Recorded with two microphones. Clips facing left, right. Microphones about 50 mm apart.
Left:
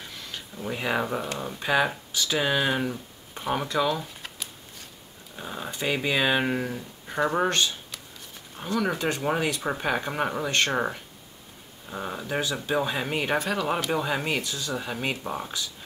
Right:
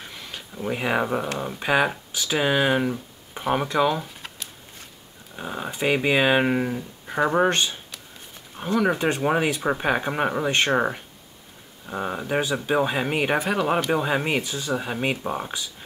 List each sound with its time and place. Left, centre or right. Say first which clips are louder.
0.1 s a sound: right 1 dB; centre
1.4 s speech: right 2 dB; centre
5.3 s speech: right 4 dB; centre